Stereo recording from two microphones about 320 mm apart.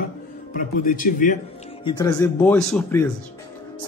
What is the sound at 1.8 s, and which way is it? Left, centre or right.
Speech, centre.